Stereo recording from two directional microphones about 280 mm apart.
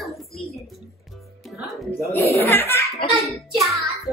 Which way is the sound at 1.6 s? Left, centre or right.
Centre.